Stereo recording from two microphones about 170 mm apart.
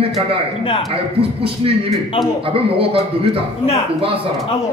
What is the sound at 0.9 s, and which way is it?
A man's voice, 35° right (ahead or behind).